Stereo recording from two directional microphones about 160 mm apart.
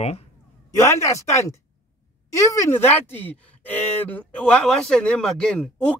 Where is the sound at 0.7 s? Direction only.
20° left (ahead or behind).